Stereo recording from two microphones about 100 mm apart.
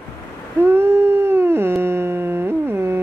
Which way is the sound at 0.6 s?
25° right (ahead or behind).